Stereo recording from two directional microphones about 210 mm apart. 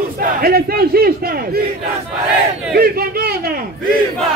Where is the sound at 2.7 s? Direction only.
45° right (ahead or behind).